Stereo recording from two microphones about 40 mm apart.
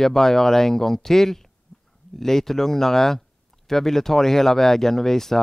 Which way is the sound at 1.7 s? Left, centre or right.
Left.